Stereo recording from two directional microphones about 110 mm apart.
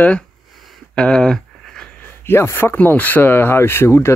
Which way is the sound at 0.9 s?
10° left (ahead or behind).